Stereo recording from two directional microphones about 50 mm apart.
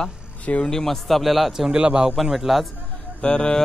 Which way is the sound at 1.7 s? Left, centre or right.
Centre.